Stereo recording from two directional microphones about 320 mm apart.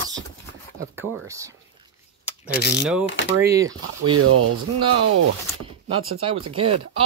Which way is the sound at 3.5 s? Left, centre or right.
Centre.